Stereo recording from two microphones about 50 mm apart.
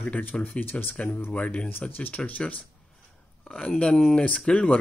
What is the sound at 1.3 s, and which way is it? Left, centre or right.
Speech, left.